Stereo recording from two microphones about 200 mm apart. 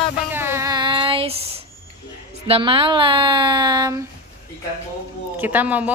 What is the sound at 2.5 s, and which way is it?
Speech, 25° right (ahead or behind).